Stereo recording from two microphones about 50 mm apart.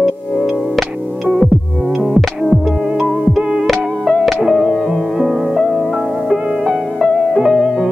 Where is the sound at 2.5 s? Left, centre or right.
Left.